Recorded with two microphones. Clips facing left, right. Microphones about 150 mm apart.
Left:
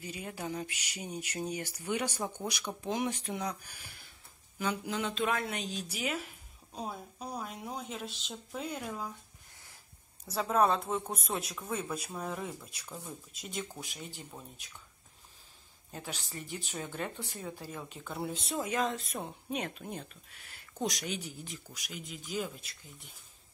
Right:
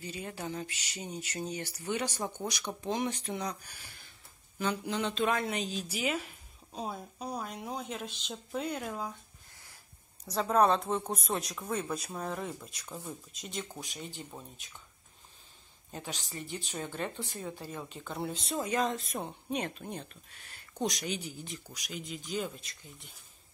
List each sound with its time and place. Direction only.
0.0 s speech: 10° left (ahead or behind)
10.5 s speech: 5° left (ahead or behind)
12.8 s speech: 10° right (ahead or behind)
13.3 s speech: 5° left (ahead or behind)
15.9 s speech: 5° left (ahead or behind)